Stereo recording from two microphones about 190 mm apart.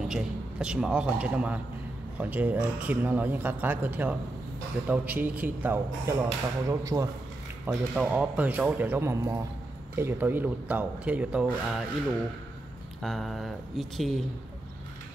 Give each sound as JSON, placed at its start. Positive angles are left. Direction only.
{"t": 0.0, "sound": "a man's voice", "side_deg": -5}
{"t": 13.0, "sound": "speech", "side_deg": 0}